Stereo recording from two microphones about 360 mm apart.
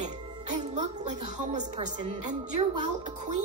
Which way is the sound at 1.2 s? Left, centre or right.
Centre.